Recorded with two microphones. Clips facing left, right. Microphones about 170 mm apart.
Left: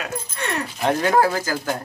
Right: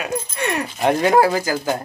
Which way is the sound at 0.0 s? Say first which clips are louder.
Right 5 dB; 15° right (ahead or behind).